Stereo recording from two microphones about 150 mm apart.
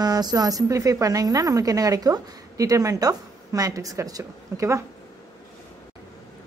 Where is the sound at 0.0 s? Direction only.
25° right (ahead or behind).